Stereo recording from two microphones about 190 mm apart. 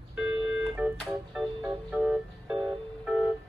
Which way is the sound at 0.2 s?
5° right (ahead or behind).